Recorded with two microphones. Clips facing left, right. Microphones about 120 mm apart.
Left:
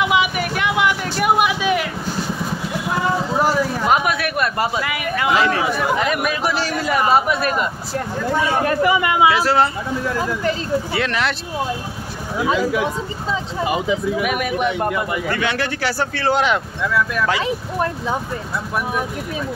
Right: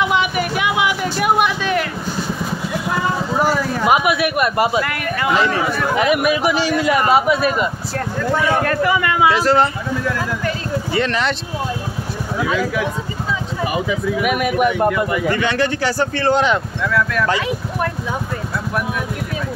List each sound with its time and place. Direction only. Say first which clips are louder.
0.0 s a sound: right 1 dB; 5° left (ahead or behind)
0.6 s a sound: left 1 dB; 5° right (ahead or behind)
3.8 s speech: right 5 dB; 5° right (ahead or behind)
4.8 s speech: even; 5° left (ahead or behind)
5.9 s speech: right 4 dB; 10° right (ahead or behind)
8.4 s speech: even; 20° left (ahead or behind)
9.3 s speech: right 2 dB; 5° left (ahead or behind)
10.9 s speech: right 2 dB; 5° left (ahead or behind)
12.4 s speech: left 1 dB; 25° left (ahead or behind)
14.2 s speech: right 3 dB; 5° right (ahead or behind)
14.9 s speech: right 4 dB; 20° left (ahead or behind)
15.2 s speech: right 4 dB; 5° left (ahead or behind)